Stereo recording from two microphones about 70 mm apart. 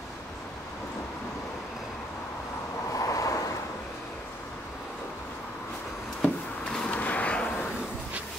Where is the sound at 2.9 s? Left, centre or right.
Left.